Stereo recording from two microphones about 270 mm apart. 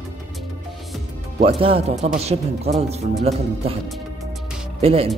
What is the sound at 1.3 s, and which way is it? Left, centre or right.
Speech, right.